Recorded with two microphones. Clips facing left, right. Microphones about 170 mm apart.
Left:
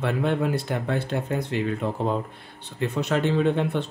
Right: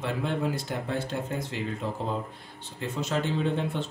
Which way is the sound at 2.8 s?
65° left (ahead or behind).